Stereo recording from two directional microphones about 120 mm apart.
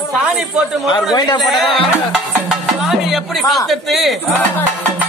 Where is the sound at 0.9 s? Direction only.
35° left (ahead or behind).